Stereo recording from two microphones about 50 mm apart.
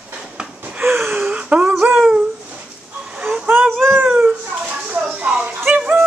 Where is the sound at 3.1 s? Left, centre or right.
Centre.